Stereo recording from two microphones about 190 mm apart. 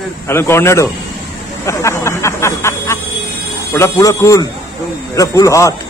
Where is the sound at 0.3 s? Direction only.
15° left (ahead or behind).